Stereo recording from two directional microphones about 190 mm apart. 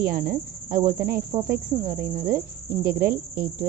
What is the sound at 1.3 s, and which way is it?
Speech, 25° right (ahead or behind).